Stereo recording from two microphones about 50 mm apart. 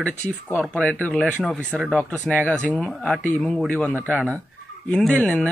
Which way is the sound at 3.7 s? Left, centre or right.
Centre.